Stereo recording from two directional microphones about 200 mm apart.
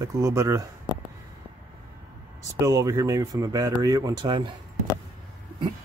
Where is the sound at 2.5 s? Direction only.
15° right (ahead or behind).